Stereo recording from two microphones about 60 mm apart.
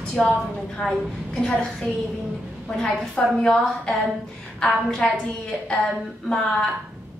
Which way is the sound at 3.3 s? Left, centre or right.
Centre.